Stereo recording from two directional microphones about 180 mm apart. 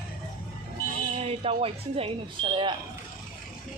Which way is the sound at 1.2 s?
30° right (ahead or behind).